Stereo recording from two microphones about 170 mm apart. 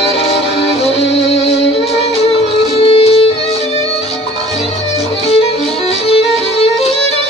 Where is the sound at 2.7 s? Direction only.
35° left (ahead or behind).